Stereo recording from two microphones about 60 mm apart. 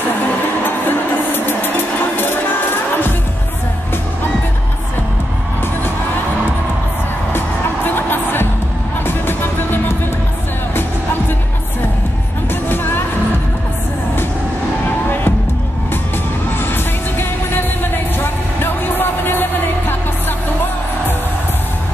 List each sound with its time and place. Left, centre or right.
0.7 s music: left
7.3 s music: left
12.6 s music: left
16.5 s music: left